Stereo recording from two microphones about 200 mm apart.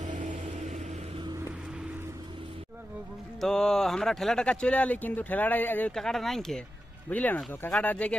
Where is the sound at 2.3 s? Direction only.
25° right (ahead or behind).